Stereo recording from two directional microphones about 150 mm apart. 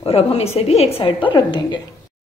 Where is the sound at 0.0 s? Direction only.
40° left (ahead or behind).